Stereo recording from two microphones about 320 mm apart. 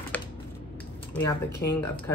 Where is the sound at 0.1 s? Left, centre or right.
Centre.